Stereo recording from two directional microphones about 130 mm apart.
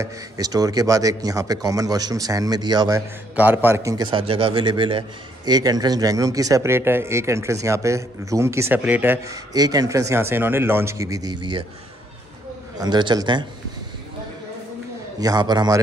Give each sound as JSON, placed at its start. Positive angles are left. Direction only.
{"t": 0.0, "sound": "a man's voice", "side_deg": -30}
{"t": 3.3, "sound": "a man's voice", "side_deg": -15}
{"t": 4.1, "sound": "a man's voice", "side_deg": -45}
{"t": 12.7, "sound": "a man's voice", "side_deg": -30}
{"t": 15.1, "sound": "a man's voice", "side_deg": -30}